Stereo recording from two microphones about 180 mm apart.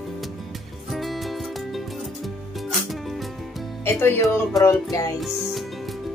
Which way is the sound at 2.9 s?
Centre (ahead or behind).